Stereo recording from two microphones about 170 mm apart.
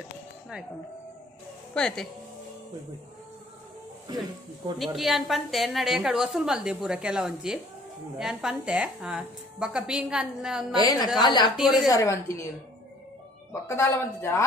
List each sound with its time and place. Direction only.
1.7 s a woman's voice: 5° left (ahead or behind)
4.7 s a woman's voice: centre (ahead or behind)
10.8 s a woman's voice: 25° left (ahead or behind)
11.5 s a woman's voice: centre (ahead or behind)
11.9 s a woman's voice: 20° left (ahead or behind)
13.5 s speech: 15° left (ahead or behind)